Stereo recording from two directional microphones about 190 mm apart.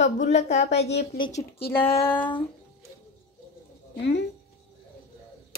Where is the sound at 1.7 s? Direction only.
10° left (ahead or behind).